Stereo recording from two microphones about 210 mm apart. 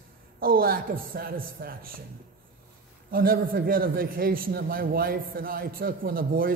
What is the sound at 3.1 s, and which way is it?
A man's voice, 45° right (ahead or behind).